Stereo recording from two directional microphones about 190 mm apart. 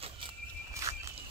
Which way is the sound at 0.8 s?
15° right (ahead or behind).